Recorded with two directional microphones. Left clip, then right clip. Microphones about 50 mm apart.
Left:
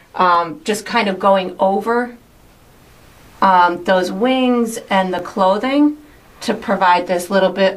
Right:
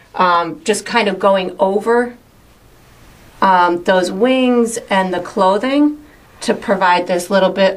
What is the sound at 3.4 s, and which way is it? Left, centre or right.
A woman's voice, right.